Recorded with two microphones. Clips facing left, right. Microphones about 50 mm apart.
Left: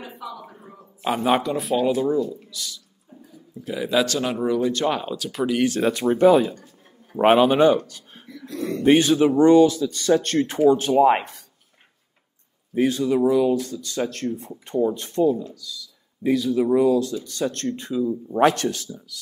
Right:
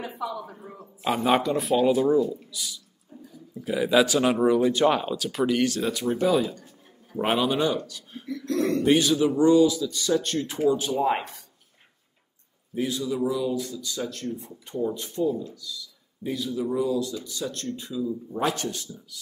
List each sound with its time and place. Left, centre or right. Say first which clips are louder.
1.0 s speech: left 2 dB; centre
5.7 s speech: left 5 dB; left
8.5 s speech: right 4 dB; right
8.8 s speech: left 7 dB; left
12.7 s speech: left 7 dB; left